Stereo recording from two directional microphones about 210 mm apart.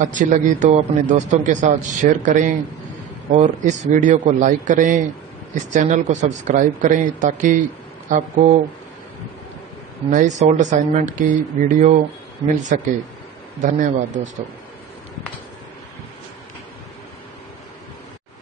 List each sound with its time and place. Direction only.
0.0 s a man's voice: 35° right (ahead or behind)
10.0 s a man's voice: 35° right (ahead or behind)